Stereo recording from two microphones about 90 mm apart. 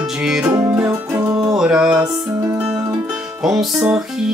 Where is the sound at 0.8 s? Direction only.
35° right (ahead or behind).